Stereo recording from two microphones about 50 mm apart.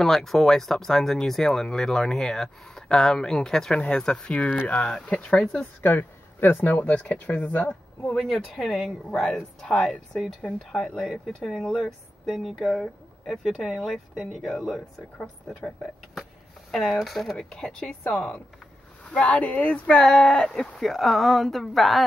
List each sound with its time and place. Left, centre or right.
0.0 s speech: centre; by 5.7 s left
5.8 s speech: left
8.2 s speech: centre
16.7 s speech: centre
17.4 s speech: centre
19.0 s speech: left
20.8 s speech: centre